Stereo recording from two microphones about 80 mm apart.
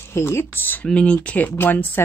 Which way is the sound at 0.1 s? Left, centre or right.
Left.